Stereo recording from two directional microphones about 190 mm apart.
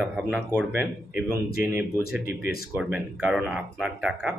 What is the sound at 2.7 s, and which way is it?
Speech, 5° right (ahead or behind).